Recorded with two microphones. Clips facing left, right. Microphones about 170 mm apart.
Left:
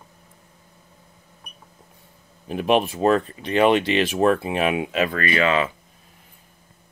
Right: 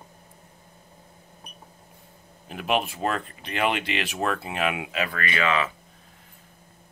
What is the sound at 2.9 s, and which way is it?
Speech, 35° left (ahead or behind).